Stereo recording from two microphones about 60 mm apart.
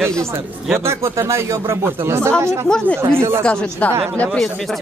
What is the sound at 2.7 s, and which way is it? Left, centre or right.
Speech, centre.